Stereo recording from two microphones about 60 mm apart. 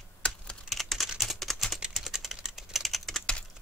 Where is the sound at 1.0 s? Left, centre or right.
Centre.